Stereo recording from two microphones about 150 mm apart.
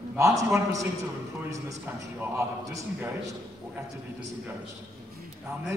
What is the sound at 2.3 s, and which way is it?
Speech, 20° right (ahead or behind).